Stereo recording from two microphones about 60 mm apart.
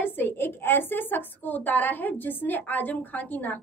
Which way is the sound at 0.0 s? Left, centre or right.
Left.